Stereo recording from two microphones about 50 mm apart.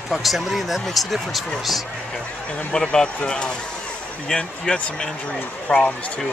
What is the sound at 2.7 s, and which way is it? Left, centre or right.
Speech, centre.